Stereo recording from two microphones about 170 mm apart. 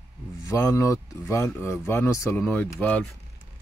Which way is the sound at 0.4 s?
15° left (ahead or behind).